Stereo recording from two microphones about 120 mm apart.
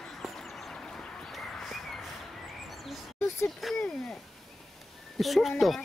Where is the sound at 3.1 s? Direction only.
20° left (ahead or behind).